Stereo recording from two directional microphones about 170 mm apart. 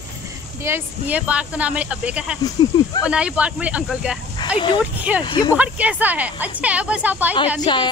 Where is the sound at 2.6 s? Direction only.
25° left (ahead or behind).